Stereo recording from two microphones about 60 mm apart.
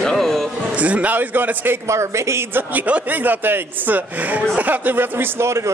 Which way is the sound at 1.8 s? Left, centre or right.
Right.